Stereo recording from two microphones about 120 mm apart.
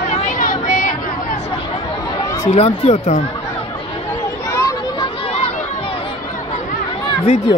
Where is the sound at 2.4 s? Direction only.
55° left (ahead or behind).